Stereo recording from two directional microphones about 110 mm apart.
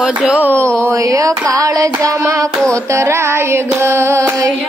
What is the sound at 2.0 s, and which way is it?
Speech, 30° right (ahead or behind).